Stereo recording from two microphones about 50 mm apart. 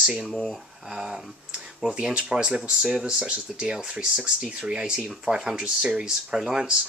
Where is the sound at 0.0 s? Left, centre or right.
Centre.